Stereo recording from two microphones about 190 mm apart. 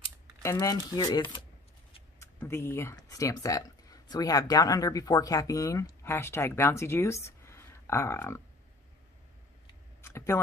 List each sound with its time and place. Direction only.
0.4 s speech: 15° left (ahead or behind)
2.1 s speech: 15° left (ahead or behind)
10.0 s speech: 15° left (ahead or behind)